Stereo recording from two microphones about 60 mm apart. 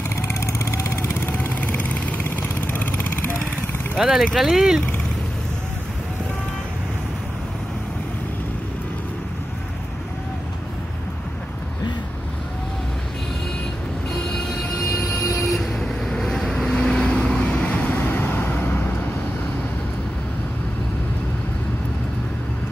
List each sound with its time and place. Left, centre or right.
0.1 s vehicle: left
1.2 s vehicle: left
4.0 s speech: centre
14.3 s vehicle: centre; by 17.9 s left
17.9 s vehicle: left